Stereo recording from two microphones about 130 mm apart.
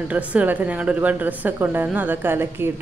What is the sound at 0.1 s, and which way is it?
A woman's voice, 10° right (ahead or behind).